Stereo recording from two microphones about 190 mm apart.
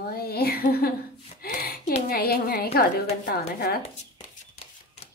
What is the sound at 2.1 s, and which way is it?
A woman's voice, 50° left (ahead or behind).